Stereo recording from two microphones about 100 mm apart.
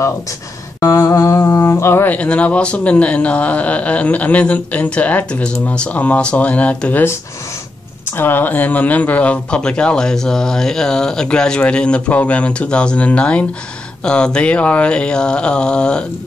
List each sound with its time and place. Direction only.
0.7 s a sound: 35° left (ahead or behind)
2.1 s speech: 15° left (ahead or behind)
8.2 s speech: 20° left (ahead or behind)